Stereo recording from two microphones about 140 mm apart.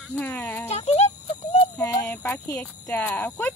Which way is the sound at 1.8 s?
20° left (ahead or behind).